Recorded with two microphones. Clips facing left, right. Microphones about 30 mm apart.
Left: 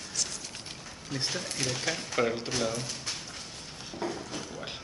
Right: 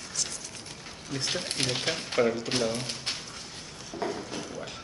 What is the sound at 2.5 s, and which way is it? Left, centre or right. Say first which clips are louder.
Speech: right 2 dB; right.